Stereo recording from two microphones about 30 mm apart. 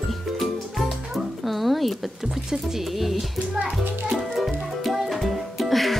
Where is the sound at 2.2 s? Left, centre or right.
Centre.